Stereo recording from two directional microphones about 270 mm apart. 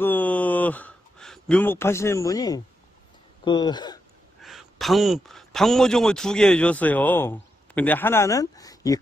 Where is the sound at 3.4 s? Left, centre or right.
Centre.